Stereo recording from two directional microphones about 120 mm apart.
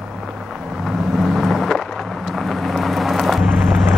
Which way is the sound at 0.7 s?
Centre (ahead or behind).